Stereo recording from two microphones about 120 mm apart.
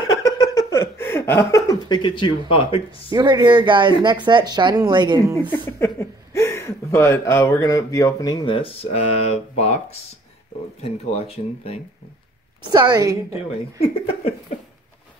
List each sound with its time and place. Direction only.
0.2 s chuckle: 30° left (ahead or behind); by 3.0 s 50° left (ahead or behind)
3.1 s speech: 35° right (ahead or behind)
5.5 s speech: 20° left (ahead or behind); by 11.8 s 55° left (ahead or behind)
12.7 s a woman's voice: 35° right (ahead or behind)